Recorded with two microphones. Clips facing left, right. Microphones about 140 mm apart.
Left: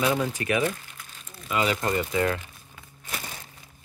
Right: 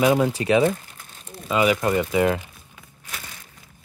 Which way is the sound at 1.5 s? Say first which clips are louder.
Right 5 dB; 15° right (ahead or behind).